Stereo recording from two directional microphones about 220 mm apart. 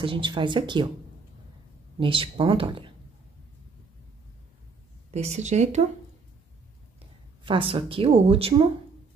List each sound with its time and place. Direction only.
0.0 s speech: 20° right (ahead or behind)
2.0 s speech: 25° right (ahead or behind)
5.1 s a woman's voice: 30° right (ahead or behind)
7.4 s speech: 25° right (ahead or behind)